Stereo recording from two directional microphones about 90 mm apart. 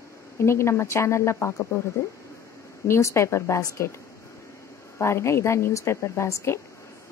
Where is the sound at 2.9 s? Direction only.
30° left (ahead or behind).